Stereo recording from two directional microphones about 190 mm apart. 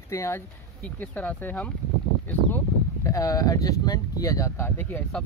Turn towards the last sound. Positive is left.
turn(degrees=10)  # may be behind; listen again after turning